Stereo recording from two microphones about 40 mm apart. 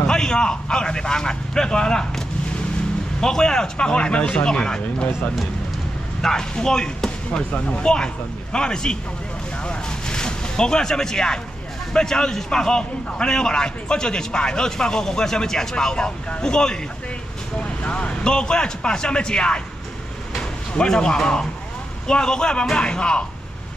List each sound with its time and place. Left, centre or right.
0.0 s a man's voice: centre
6.5 s speech: centre
7.5 s speech: left
8.5 s a man's voice: centre